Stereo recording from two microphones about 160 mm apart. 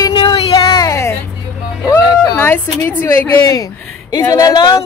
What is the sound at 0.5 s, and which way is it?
A woman's voice, 25° left (ahead or behind).